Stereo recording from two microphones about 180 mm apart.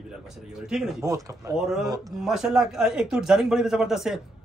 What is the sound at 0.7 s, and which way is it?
Speech, centre (ahead or behind).